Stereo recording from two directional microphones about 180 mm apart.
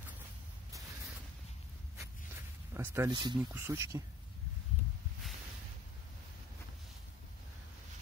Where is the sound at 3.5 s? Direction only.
15° right (ahead or behind).